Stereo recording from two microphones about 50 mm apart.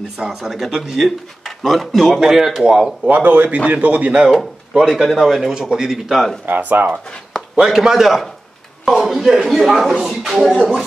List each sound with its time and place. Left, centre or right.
0.2 s speech: centre
3.1 s a man's voice: right
4.7 s speech: centre
5.5 s speech: centre
5.9 s speech: centre
6.4 s speech: right
7.5 s speech: centre
10.6 s speech: centre